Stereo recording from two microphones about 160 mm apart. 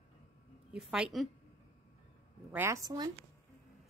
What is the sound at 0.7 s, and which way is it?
Speech, 5° right (ahead or behind).